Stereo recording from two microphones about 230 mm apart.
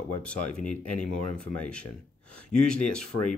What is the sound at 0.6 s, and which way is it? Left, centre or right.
Speech, left.